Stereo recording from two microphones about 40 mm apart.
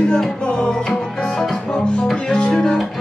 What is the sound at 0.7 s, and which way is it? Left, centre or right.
Music, centre.